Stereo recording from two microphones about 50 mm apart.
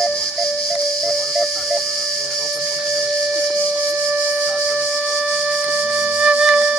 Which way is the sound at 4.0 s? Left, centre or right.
Right.